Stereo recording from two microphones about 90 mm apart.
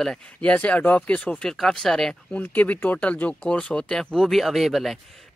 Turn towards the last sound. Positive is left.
turn(degrees=0)  # may be behind; listen again after turning